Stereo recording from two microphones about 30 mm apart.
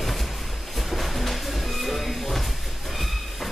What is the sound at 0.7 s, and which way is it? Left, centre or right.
Music, centre.